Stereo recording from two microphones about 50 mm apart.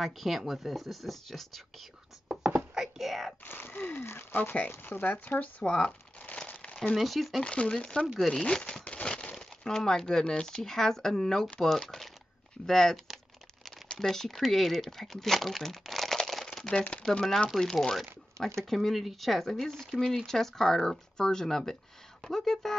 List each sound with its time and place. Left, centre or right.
0.0 s speech: centre
2.2 s a sound: right
2.7 s wail: centre
3.4 s a sound: left
4.4 s speech: left
4.6 s speech: left
5.6 s speech: centre
6.3 s crumpling: left
7.0 s speech: centre
7.4 s speech: centre
13.9 s speech: centre
16.3 s shuffling cards: centre
17.0 s speech: centre